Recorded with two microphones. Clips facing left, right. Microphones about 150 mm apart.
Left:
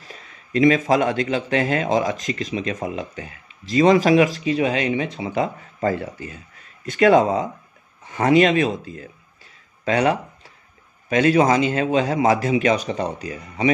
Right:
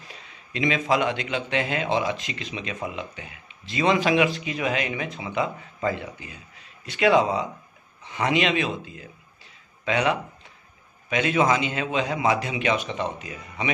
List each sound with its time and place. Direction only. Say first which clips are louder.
0.1 s a man's voice: left 11 dB; 45° left (ahead or behind)